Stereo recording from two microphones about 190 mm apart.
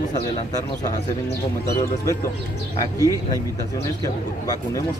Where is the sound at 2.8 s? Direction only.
20° left (ahead or behind).